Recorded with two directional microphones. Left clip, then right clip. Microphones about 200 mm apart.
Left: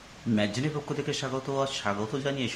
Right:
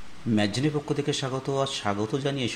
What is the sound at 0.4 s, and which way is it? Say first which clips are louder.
Speech: right 4 dB; 20° right (ahead or behind).